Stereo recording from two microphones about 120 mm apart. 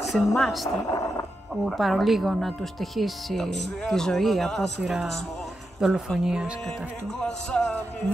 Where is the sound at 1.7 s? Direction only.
Centre (ahead or behind).